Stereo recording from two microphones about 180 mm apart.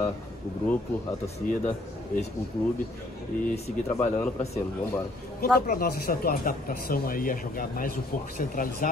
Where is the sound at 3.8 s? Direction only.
10° left (ahead or behind).